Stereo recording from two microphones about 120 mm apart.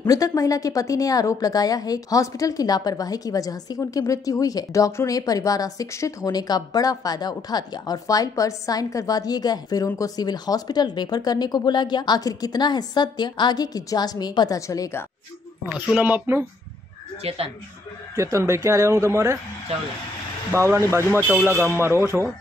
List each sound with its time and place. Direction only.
0.0 s a woman's voice: 30° left (ahead or behind)
15.7 s speech: 10° right (ahead or behind)
17.2 s speech: 55° right (ahead or behind)
18.1 s a man's voice: 25° right (ahead or behind)
20.5 s a man's voice: 20° right (ahead or behind)